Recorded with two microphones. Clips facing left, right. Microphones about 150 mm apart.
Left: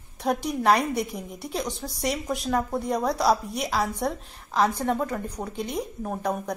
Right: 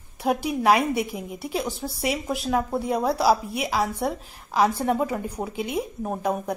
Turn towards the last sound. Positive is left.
turn(degrees=-5)  # may be behind; listen again after turning